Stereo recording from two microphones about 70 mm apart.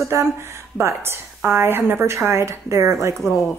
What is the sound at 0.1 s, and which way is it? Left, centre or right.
Speech, right.